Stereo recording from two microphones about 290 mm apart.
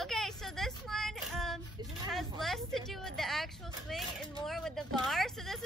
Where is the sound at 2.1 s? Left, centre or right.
Centre.